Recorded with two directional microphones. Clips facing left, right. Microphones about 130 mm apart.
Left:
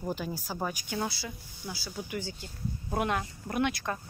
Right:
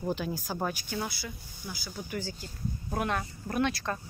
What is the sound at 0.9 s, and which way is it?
Speech, 30° left (ahead or behind).